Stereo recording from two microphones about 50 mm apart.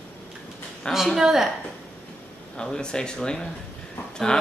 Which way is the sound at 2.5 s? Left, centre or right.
Centre.